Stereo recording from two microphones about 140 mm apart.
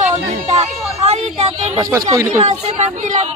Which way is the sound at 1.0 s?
50° right (ahead or behind).